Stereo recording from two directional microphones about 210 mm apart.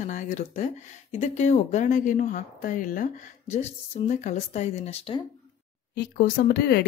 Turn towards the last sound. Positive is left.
turn(degrees=50)  # may be behind; listen again after turning